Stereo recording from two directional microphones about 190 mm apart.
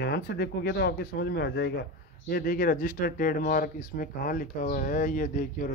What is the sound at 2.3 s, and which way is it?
Speech, 50° left (ahead or behind).